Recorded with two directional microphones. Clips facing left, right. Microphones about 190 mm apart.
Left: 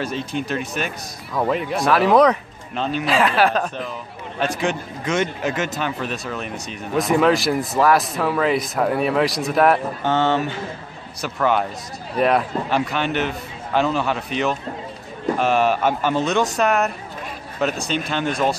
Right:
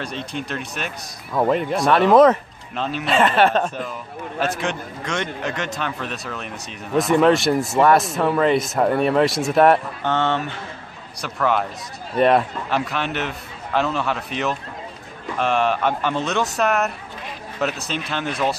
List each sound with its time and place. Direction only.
0.0 s a man's voice: centre (ahead or behind)